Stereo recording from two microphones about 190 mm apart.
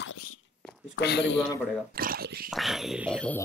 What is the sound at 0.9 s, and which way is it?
Speech, 65° left (ahead or behind).